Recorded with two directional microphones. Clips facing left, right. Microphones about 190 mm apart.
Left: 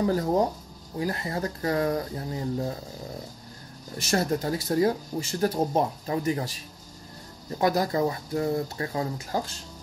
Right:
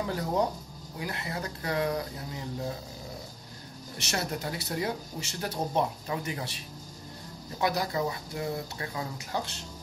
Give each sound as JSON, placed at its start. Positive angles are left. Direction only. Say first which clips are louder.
{"t": 0.0, "sound": "speech", "louder": "left 5 dB", "side_deg": 40}
{"t": 4.1, "sound": "speech", "louder": "left 8 dB", "side_deg": 45}
{"t": 7.6, "sound": "speech", "louder": "left 5 dB", "side_deg": 45}